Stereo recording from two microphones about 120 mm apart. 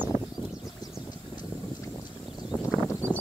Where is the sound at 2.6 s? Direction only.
25° left (ahead or behind).